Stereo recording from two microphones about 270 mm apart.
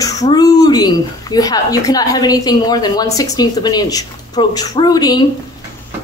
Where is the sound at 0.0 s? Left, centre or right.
Centre.